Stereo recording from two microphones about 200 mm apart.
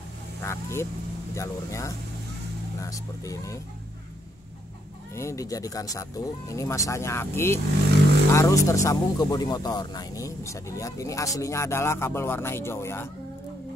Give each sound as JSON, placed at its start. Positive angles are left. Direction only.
{"t": 0.4, "sound": "speech", "side_deg": 15}
{"t": 5.1, "sound": "speech", "side_deg": 15}